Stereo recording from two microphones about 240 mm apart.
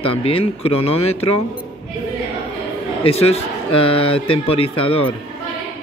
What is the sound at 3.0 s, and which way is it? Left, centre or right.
Speech, left.